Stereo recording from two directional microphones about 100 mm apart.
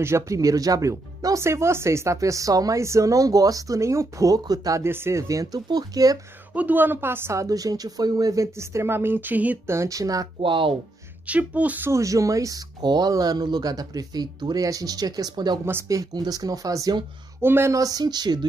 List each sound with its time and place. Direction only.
0.0 s speech: 30° right (ahead or behind)
4.8 s speech: 25° right (ahead or behind)
6.5 s a woman's voice: 15° right (ahead or behind)
9.7 s speech: 30° right (ahead or behind)
10.4 s speech: 60° right (ahead or behind)
11.2 s speech: 15° right (ahead or behind)
11.9 s speech: 30° right (ahead or behind)
15.6 s a woman's voice: 25° right (ahead or behind)
16.0 s speech: 40° right (ahead or behind)
17.4 s a woman's voice: 25° right (ahead or behind)
17.7 s speech: 40° right (ahead or behind)